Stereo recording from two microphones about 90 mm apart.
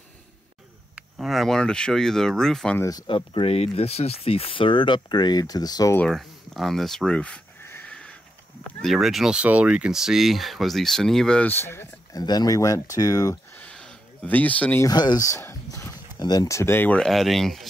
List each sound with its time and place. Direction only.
1.1 s speech: centre (ahead or behind)
3.1 s speech: 70° left (ahead or behind); by 5.9 s 45° left (ahead or behind)
6.0 s speech: centre (ahead or behind)
7.6 s a sound: 25° left (ahead or behind)
7.9 s a sound: 10° left (ahead or behind)
8.8 s speech: centre (ahead or behind)
11.4 s speech: 25° left (ahead or behind)
12.1 s speech: 45° left (ahead or behind)
13.6 s a sound: 10° left (ahead or behind)
14.3 s speech: 15° left (ahead or behind)
14.9 s a sound: 50° left (ahead or behind)
16.4 s speech: 30° left (ahead or behind)
17.0 s speech: centre (ahead or behind)